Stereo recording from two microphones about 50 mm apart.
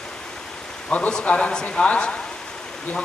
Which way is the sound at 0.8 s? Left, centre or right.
Left.